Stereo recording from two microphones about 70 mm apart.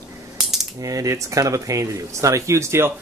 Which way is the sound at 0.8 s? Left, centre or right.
Right.